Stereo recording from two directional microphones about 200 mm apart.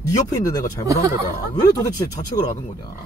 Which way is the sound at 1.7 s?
15° left (ahead or behind).